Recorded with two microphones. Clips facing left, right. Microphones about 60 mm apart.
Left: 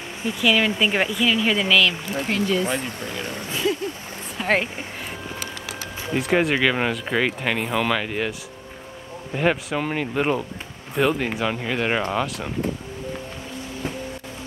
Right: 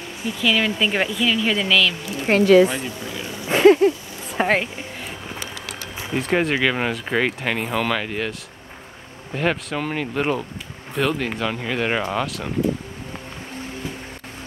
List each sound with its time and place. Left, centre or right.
0.2 s speech: centre
2.4 s speech: right
3.2 s speech: left
3.4 s speech: right
4.4 s speech: right
6.1 s speech: centre